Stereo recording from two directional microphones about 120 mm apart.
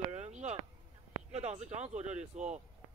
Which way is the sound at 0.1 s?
70° right (ahead or behind).